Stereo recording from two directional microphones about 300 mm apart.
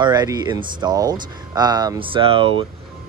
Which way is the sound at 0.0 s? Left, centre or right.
Centre.